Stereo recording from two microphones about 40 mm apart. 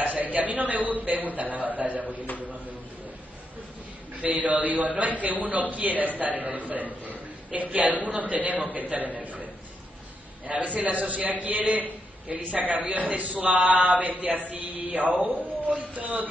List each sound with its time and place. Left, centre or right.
0.0 s a man's voice: right
1.8 s a sound: right
4.2 s a man's voice: right